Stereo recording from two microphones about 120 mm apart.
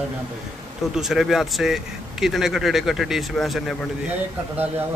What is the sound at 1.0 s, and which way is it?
Speech, 5° right (ahead or behind).